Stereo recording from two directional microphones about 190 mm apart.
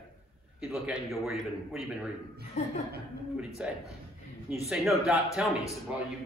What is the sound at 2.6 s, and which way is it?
Speech, 35° left (ahead or behind).